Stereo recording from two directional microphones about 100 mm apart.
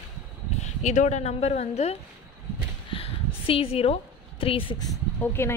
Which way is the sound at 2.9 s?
70° left (ahead or behind).